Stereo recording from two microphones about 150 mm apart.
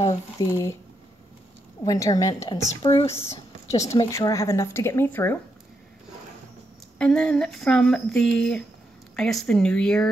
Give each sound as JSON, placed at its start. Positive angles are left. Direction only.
{"t": 0.0, "sound": "speech", "side_deg": 25}
{"t": 1.9, "sound": "a woman's voice", "side_deg": 25}
{"t": 7.0, "sound": "speech", "side_deg": 5}